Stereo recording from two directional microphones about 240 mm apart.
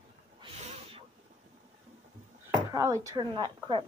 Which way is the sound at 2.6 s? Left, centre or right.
Centre.